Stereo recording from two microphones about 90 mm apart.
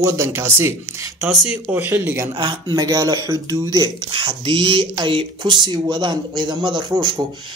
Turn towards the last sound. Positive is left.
turn(degrees=-50)  # may be behind; listen again after turning